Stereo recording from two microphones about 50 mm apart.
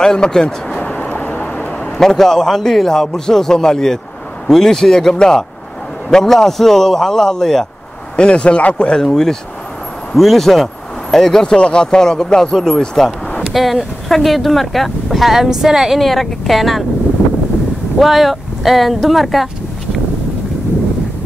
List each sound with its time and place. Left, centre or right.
0.0 s vehicle: centre; by 1.7 s left
2.0 s speech: centre
8.2 s speech: left; by 16.8 s centre
17.9 s speech: centre